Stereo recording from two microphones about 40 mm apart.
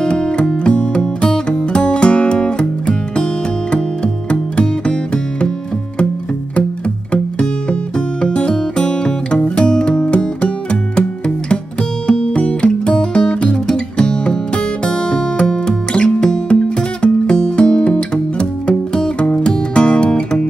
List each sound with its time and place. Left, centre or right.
0.0 s music: centre
3.7 s music: left
8.2 s music: left
12.4 s music: left